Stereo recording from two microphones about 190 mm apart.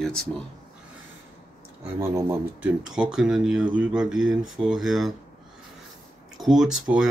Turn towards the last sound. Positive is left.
turn(degrees=-10)  # may be behind; listen again after turning